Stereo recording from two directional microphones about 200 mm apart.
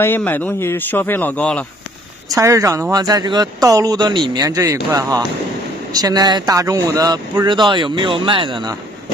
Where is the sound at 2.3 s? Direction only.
15° right (ahead or behind).